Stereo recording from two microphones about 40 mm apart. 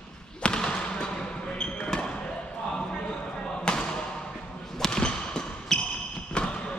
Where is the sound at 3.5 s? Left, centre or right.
Left.